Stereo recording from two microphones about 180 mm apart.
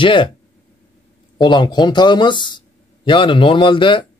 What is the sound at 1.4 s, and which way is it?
Speech, 25° left (ahead or behind).